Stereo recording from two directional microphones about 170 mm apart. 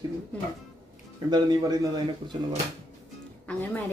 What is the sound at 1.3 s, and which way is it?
Speech, 25° right (ahead or behind).